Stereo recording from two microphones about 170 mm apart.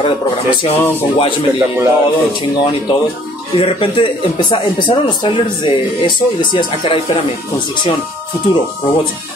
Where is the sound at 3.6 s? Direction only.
30° left (ahead or behind).